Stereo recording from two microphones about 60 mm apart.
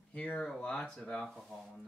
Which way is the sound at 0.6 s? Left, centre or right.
Centre.